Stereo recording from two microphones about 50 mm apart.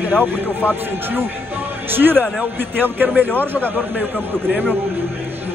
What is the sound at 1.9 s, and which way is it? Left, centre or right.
Speech, right.